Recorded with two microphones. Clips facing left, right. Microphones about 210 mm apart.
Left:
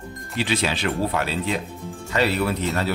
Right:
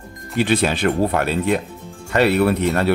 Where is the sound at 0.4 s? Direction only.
55° right (ahead or behind).